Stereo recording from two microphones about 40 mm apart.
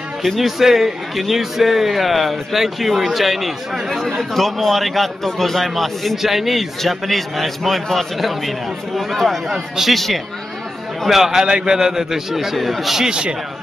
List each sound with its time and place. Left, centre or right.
0.2 s a man's voice: centre
11.1 s a man's voice: centre
13.0 s speech: right